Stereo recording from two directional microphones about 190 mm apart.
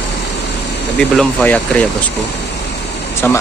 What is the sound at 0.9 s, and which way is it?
Speech, 5° left (ahead or behind).